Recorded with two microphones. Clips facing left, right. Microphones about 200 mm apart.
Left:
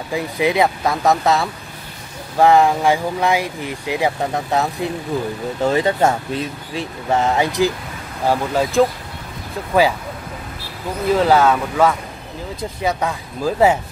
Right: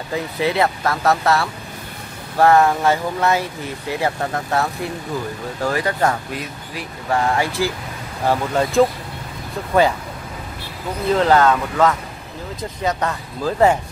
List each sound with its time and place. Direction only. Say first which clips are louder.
0.1 s speech: left 2 dB; 15° left (ahead or behind)
8.3 s speech: left 1 dB; 5° left (ahead or behind)
11.1 s speech: left 1 dB; 10° left (ahead or behind)